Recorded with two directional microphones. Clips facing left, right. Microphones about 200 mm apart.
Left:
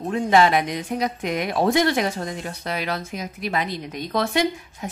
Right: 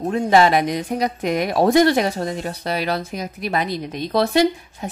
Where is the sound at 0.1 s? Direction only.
35° right (ahead or behind).